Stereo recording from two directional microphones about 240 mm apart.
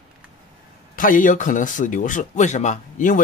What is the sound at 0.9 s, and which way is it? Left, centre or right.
Speech, left.